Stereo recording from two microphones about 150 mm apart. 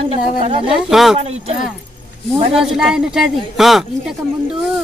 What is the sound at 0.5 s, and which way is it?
Speech, 35° right (ahead or behind).